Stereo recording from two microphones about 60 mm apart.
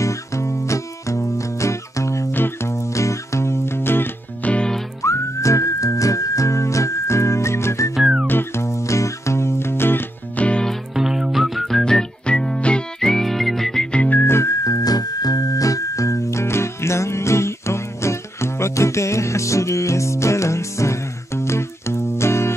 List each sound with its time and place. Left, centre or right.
0.0 s music: left
2.3 s music: left
2.7 s music: left
4.5 s music: centre
5.0 s whistling: left
7.9 s music: centre
8.3 s music: left
8.6 s music: left
10.3 s music: left
11.0 s music: centre
13.9 s whistling: left
14.2 s music: left